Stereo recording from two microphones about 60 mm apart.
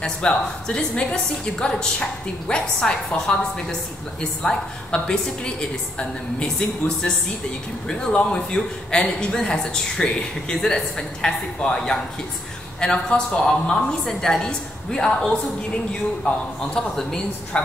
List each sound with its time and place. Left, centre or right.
0.0 s a woman's voice: centre
7.9 s a woman's voice: centre
16.3 s a man's voice: left
16.7 s a woman's voice: centre